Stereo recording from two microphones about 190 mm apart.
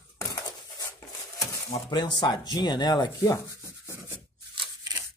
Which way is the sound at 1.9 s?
20° left (ahead or behind).